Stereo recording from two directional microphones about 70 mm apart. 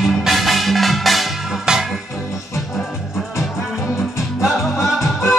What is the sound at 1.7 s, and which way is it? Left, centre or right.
Music, centre.